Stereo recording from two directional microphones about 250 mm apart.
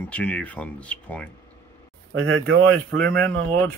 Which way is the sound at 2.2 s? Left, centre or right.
Right.